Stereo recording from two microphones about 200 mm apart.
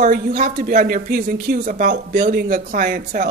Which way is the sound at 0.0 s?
45° right (ahead or behind).